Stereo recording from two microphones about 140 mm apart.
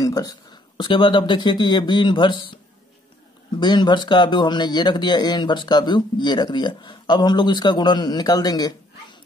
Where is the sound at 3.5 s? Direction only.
30° left (ahead or behind).